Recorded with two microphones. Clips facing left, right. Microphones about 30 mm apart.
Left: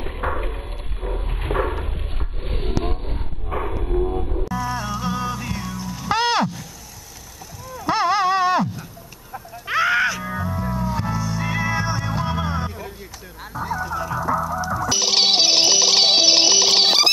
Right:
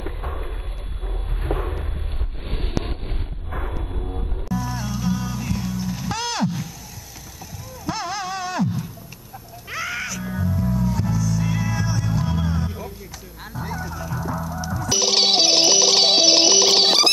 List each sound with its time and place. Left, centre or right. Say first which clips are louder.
2.4 s a sound: left 3 dB; centre
4.6 s music: left 2 dB; centre
5.7 s music: right 2 dB; centre
6.0 s wild animals: left 10 dB; left
7.8 s a sound: left 9 dB; left
9.7 s music: left 9 dB; left
13.4 s music: left 5 dB; centre